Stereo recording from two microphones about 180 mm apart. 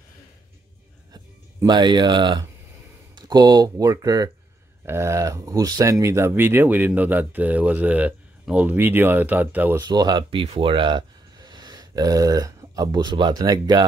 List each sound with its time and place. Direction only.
1.1 s music: 25° right (ahead or behind)
3.2 s speech: 25° right (ahead or behind)
9.8 s speech: 20° right (ahead or behind)